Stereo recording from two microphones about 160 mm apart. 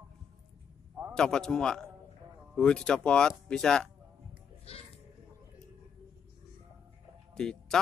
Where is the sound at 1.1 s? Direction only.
5° left (ahead or behind).